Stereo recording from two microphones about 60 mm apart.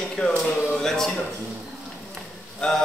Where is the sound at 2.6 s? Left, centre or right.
Centre.